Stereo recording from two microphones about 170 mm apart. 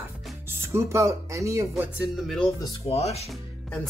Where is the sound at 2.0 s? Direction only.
Centre (ahead or behind).